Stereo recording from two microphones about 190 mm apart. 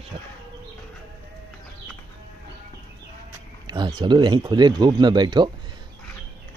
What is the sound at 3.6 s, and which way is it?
Speech, 25° right (ahead or behind).